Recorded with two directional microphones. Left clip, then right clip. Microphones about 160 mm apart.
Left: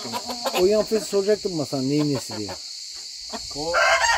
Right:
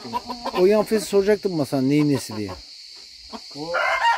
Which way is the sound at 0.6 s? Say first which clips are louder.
Right 3 dB; 50° right (ahead or behind).